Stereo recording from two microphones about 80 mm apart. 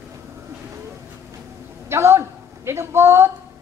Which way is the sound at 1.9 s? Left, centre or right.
Right.